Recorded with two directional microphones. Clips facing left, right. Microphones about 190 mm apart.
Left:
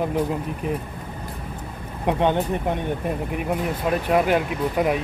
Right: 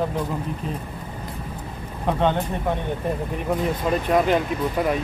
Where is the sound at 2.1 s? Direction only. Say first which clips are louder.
Left 1 dB; 15° left (ahead or behind).